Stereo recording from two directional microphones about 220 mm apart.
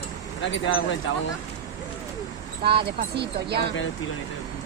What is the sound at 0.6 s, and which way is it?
Speech, 60° left (ahead or behind).